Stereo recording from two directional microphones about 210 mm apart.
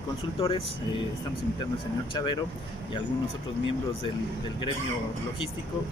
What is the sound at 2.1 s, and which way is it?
Speech, 20° left (ahead or behind).